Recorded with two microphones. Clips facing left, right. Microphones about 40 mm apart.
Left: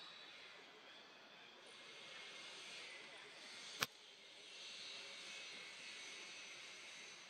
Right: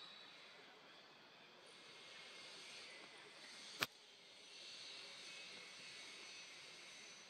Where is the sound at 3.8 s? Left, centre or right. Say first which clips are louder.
Even; centre.